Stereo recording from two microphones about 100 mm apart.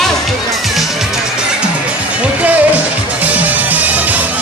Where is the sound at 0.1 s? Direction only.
Centre (ahead or behind).